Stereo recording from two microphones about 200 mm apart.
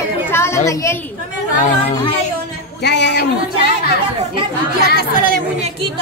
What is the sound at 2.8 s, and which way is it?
Speech, 60° left (ahead or behind).